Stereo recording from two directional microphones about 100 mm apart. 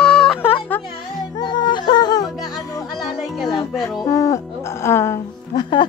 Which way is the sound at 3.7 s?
Centre (ahead or behind).